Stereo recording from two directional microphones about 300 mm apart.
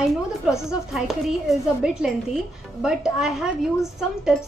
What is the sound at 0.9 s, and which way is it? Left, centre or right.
A woman's voice, centre.